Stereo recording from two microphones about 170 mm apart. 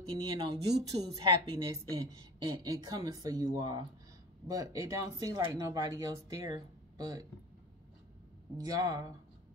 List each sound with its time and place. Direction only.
0.1 s a woman's voice: 30° right (ahead or behind)
8.5 s speech: 20° right (ahead or behind)